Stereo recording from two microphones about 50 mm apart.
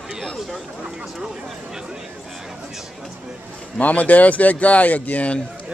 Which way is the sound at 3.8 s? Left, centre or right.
Left.